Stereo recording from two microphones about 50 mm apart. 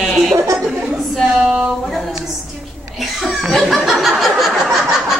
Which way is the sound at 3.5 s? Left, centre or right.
Centre.